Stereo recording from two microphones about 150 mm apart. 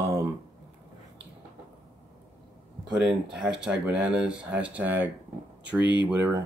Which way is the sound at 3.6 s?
5° right (ahead or behind).